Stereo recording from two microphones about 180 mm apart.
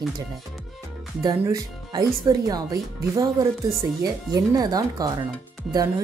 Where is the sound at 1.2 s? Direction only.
20° right (ahead or behind).